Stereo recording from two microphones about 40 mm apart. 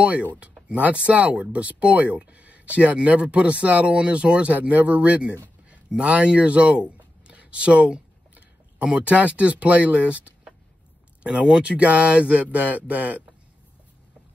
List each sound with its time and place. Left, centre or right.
0.0 s speech: right
5.9 s a sound: right
9.0 s speech: right
11.6 s speech: right